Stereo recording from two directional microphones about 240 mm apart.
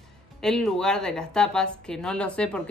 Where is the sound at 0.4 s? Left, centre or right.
Centre.